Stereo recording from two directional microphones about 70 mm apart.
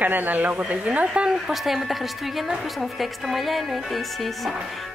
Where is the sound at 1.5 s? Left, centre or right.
Centre.